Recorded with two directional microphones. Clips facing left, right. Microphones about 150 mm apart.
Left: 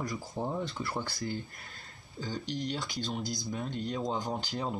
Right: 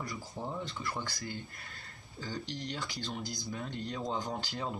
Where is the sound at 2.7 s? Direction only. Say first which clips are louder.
Left 4 dB; 20° left (ahead or behind).